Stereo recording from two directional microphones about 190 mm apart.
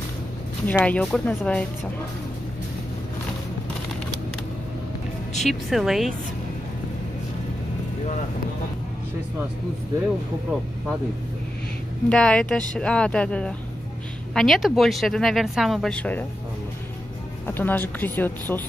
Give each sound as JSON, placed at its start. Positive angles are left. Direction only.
{"t": 0.7, "sound": "speech", "side_deg": 10}
{"t": 5.4, "sound": "speech", "side_deg": 0}
{"t": 12.1, "sound": "speech", "side_deg": 5}
{"t": 17.5, "sound": "speech", "side_deg": 10}